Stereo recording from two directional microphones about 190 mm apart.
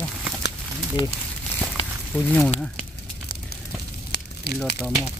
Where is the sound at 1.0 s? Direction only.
30° left (ahead or behind).